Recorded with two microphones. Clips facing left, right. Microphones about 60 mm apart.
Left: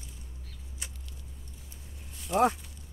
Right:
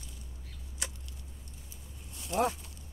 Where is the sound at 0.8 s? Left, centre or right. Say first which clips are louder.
Right 5 dB; right.